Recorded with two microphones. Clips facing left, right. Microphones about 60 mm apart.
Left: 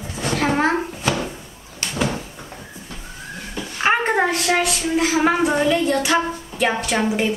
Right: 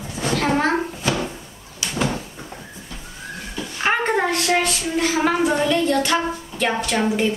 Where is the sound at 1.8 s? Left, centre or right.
Left.